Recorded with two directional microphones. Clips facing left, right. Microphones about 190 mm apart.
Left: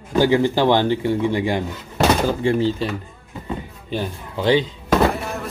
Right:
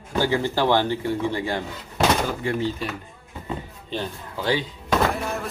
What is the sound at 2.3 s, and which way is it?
Speech, 30° left (ahead or behind).